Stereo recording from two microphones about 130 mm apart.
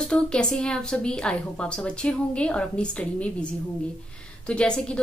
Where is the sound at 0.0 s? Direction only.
5° left (ahead or behind).